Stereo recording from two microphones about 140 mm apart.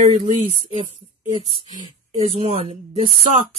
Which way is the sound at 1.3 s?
40° right (ahead or behind).